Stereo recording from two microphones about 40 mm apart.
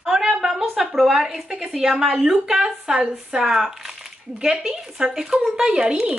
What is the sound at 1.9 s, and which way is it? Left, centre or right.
Speech, centre.